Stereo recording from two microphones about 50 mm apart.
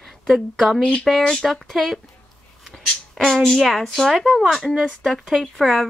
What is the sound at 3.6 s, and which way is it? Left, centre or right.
Speech, centre.